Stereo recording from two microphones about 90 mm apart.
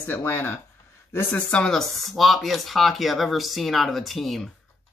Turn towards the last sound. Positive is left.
turn(degrees=0)  # may be behind; listen again after turning